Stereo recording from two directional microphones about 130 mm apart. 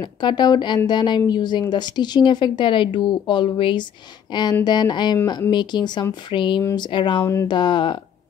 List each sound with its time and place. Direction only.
0.0 s a woman's voice: 35° left (ahead or behind)